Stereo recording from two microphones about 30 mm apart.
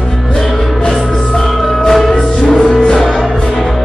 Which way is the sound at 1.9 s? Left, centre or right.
Centre.